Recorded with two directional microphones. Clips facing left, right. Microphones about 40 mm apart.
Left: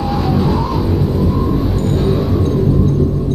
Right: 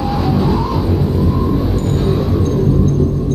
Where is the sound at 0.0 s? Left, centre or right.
Centre.